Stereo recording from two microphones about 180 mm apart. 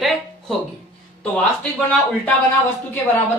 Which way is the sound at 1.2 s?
5° left (ahead or behind).